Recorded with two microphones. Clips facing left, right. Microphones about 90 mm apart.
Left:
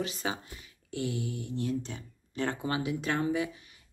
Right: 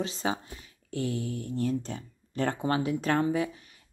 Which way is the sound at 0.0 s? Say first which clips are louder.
Right 3 dB; 30° right (ahead or behind).